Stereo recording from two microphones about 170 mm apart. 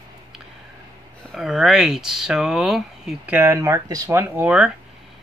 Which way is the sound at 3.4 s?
15° right (ahead or behind).